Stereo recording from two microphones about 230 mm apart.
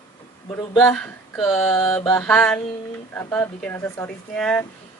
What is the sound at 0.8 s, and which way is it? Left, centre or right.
Speech, centre.